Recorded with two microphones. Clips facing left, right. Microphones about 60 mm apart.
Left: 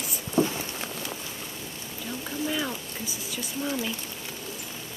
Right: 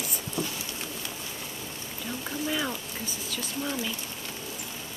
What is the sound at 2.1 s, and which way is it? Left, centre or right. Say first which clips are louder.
Rain: left 1 dB; centre.